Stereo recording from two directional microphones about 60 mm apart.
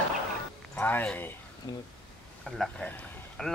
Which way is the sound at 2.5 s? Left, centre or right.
Centre.